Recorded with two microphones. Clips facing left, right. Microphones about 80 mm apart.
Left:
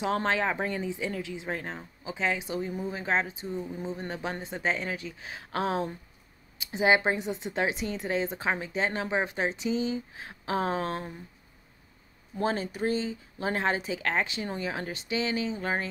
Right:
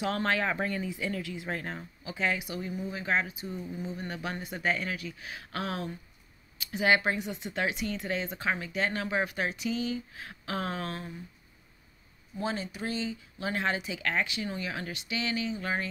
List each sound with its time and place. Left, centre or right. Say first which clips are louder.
0.0 s speech: left 2 dB; left
12.4 s speech: left 5 dB; left